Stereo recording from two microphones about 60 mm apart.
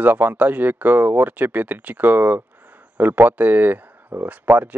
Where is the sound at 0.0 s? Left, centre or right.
Right.